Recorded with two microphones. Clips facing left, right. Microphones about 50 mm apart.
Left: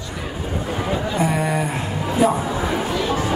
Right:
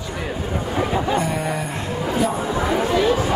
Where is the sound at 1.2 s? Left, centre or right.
Centre.